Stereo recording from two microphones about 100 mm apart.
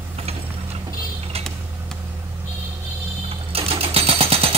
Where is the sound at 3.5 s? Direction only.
75° right (ahead or behind).